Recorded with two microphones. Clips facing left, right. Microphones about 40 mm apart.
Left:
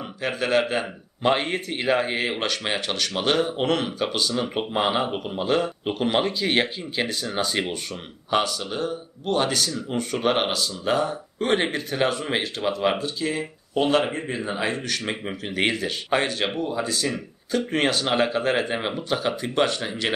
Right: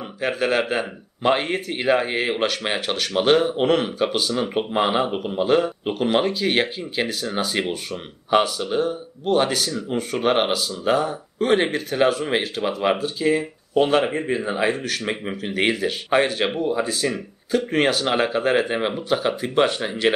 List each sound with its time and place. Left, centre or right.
0.2 s speech: centre